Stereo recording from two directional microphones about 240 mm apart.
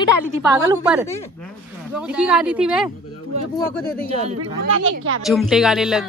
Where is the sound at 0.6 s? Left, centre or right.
Centre.